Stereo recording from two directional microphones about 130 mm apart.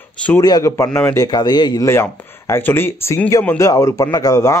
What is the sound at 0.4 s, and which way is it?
A man's voice, 30° left (ahead or behind).